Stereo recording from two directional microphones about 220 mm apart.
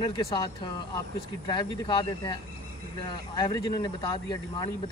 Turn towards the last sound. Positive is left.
turn(degrees=20)  # may be behind; listen again after turning